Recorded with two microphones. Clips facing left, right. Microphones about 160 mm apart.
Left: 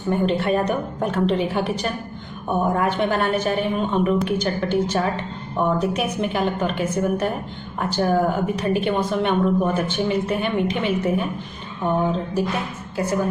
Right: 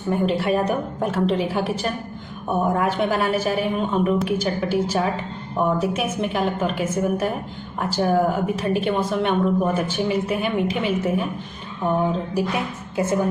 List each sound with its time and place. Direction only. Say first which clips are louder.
0.1 s a woman's voice: even; centre (ahead or behind)
12.9 s a woman's voice: right 1 dB; 25° right (ahead or behind)